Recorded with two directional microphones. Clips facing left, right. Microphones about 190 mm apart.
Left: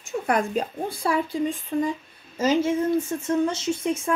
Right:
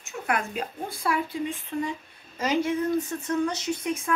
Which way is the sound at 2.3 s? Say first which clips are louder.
Left 4 dB; 25° left (ahead or behind).